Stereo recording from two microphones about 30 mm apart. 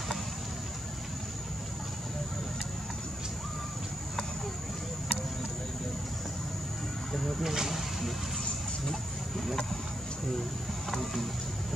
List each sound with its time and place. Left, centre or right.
7.2 s vehicle: centre
7.4 s vehicle: centre